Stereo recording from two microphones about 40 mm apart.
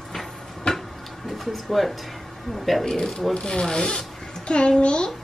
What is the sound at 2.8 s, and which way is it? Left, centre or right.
A child's voice, centre.